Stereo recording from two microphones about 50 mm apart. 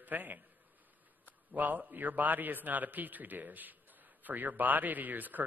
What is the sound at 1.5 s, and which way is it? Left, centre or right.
Speech, right.